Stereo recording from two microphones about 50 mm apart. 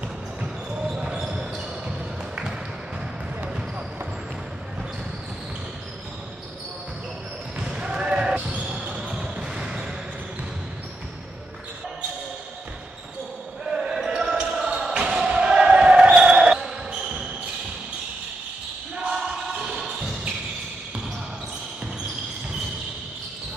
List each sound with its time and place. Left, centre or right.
0.4 s basketball bounce: centre
7.6 s basketball bounce: centre
13.7 s basketball bounce: centre
19.0 s basketball bounce: centre